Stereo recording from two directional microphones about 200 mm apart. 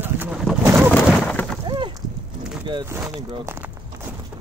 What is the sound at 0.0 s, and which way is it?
Pigeon, 10° right (ahead or behind).